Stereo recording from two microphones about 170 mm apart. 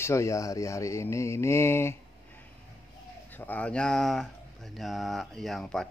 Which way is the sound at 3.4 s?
10° left (ahead or behind).